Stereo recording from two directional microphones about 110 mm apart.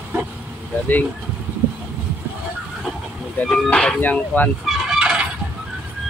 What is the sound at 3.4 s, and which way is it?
Speech, 10° left (ahead or behind).